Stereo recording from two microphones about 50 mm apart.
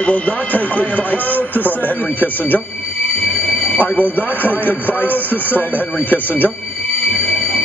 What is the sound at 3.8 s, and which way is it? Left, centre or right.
Speech, left.